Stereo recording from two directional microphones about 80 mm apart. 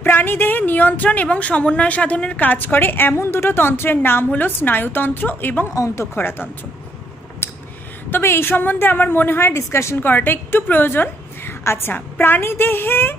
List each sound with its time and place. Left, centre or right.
0.0 s a woman's voice: left
8.1 s a woman's voice: left
9.5 s a woman's voice: left